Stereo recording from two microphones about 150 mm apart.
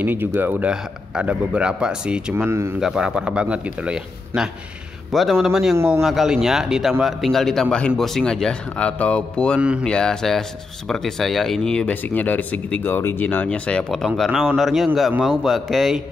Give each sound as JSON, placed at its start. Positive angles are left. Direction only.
{"t": 0.0, "sound": "a man's voice", "side_deg": -15}
{"t": 2.8, "sound": "a man's voice", "side_deg": -5}
{"t": 5.8, "sound": "a man's voice", "side_deg": -15}
{"t": 6.0, "sound": "speech", "side_deg": 0}
{"t": 9.6, "sound": "a man's voice", "side_deg": -5}
{"t": 9.8, "sound": "speech", "side_deg": 5}